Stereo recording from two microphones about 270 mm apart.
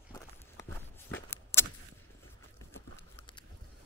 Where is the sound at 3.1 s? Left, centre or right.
Centre.